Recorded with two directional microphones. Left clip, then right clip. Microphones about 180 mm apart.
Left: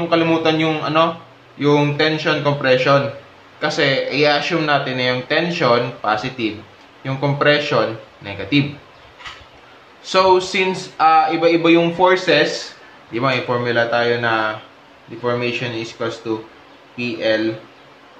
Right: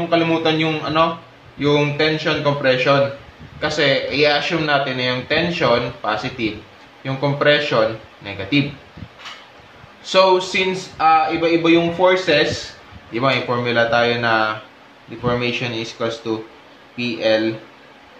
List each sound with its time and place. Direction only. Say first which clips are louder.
0.1 s a man's voice: left 1 dB; 5° left (ahead or behind)
10.0 s speech: even; 5° left (ahead or behind)
13.1 s a man's voice: even; 5° right (ahead or behind)